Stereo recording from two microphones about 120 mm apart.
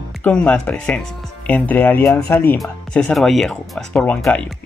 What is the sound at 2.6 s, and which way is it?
Speech, 5° left (ahead or behind).